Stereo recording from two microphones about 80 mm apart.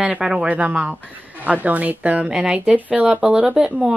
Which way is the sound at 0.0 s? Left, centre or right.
Centre.